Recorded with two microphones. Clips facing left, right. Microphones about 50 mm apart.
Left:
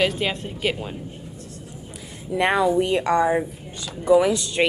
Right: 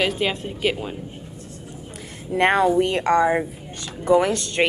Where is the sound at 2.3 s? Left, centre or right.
Right.